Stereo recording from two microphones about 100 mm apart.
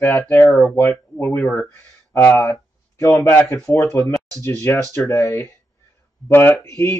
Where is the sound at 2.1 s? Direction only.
25° left (ahead or behind).